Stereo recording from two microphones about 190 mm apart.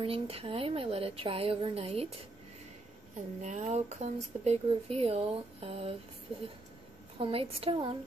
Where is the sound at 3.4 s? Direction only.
40° right (ahead or behind).